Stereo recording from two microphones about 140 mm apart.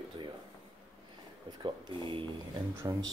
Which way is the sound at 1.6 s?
35° right (ahead or behind).